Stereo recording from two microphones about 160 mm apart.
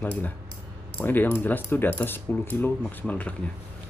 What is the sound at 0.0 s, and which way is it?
Speech, 10° left (ahead or behind).